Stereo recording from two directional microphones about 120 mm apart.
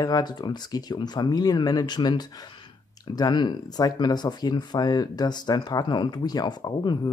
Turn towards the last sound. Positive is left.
turn(degrees=35)  # may be behind; listen again after turning